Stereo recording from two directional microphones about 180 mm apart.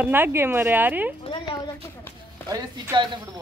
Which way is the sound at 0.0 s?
10° right (ahead or behind).